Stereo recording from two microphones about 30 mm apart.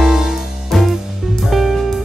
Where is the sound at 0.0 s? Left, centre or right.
Centre.